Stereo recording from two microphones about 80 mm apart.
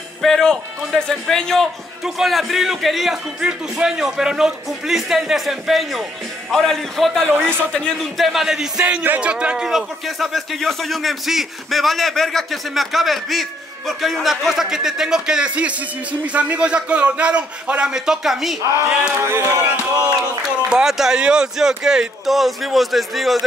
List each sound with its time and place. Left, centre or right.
0.2 s a man's voice: centre
7.3 s speech: right
7.7 s a man's voice: centre
8.8 s a man's voice: right; by 18.6 s centre
19.1 s speech: right
20.7 s a man's voice: centre